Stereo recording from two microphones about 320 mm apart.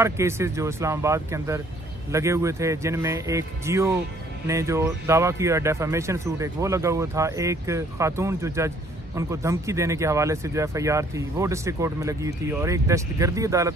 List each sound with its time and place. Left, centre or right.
0.0 s speech: centre